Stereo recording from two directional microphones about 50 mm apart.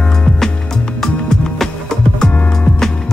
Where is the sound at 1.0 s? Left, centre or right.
Centre.